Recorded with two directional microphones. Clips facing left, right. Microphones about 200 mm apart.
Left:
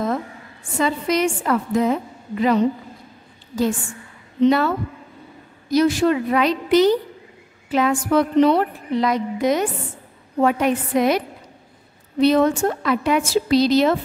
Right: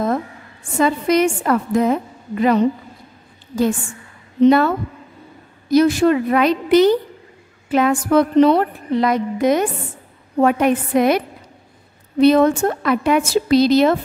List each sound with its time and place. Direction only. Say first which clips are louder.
0.7 s a woman's voice: right 4 dB; 50° right (ahead or behind)
4.4 s a woman's voice: right 4 dB; 50° right (ahead or behind)